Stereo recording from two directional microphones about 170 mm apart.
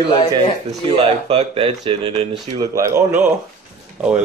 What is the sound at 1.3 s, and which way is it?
Speech, 35° right (ahead or behind).